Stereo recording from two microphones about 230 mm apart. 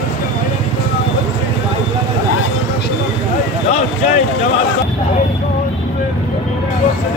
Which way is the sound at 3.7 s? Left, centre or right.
Left.